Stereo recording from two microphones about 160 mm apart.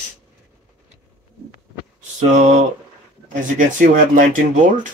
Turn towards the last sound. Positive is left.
turn(degrees=-55)  # may be behind; listen again after turning